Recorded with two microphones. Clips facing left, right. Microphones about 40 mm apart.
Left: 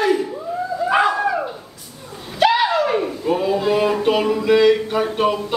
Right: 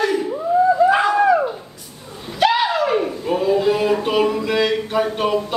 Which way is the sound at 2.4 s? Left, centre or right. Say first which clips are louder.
Left 1 dB; centre.